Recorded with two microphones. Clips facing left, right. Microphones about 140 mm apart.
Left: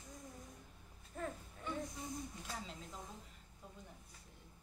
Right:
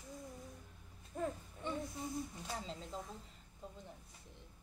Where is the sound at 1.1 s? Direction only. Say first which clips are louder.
Right 4 dB; 15° right (ahead or behind).